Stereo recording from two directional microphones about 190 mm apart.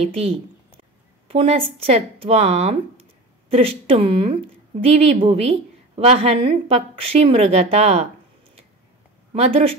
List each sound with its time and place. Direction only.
1.3 s a woman's voice: 30° right (ahead or behind)
9.3 s a woman's voice: 35° right (ahead or behind)